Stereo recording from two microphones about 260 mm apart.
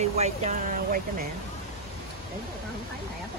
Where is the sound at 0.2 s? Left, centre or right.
Right.